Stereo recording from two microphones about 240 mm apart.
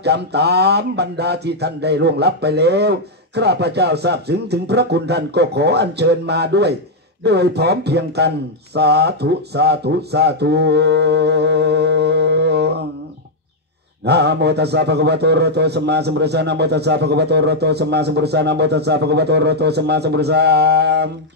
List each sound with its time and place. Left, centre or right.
0.0 s a man's voice: right
14.0 s a man's voice: right